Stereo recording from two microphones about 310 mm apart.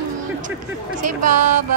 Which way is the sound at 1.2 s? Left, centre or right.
Right.